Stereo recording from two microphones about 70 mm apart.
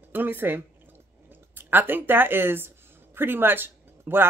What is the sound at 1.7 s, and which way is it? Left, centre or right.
Speech, right.